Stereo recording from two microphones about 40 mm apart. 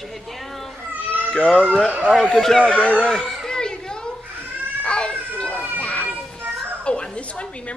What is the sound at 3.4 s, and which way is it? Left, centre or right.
Children playing, centre.